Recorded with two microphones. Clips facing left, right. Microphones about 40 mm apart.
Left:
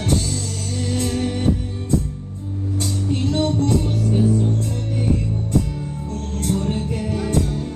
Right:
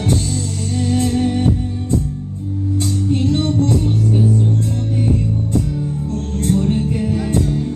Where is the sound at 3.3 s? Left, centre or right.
Centre.